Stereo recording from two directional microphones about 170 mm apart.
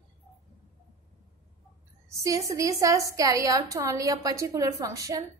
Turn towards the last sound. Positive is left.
turn(degrees=-20)  # may be behind; listen again after turning